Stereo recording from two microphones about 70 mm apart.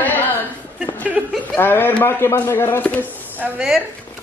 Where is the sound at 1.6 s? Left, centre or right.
Left.